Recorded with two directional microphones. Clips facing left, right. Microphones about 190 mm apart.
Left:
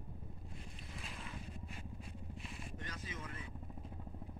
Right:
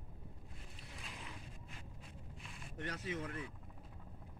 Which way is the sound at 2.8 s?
70° right (ahead or behind).